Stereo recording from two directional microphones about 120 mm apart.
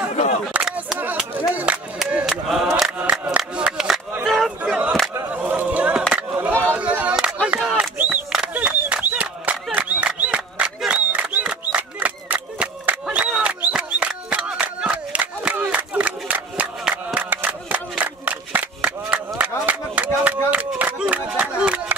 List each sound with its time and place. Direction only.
0.1 s single-lens reflex camera: 70° left (ahead or behind)
0.6 s single-lens reflex camera: 5° right (ahead or behind)
0.9 s a sound: 15° right (ahead or behind)